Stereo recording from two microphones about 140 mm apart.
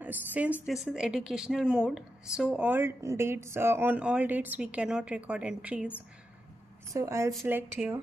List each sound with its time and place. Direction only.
0.0 s a woman's voice: 10° right (ahead or behind)
6.9 s a woman's voice: 20° right (ahead or behind)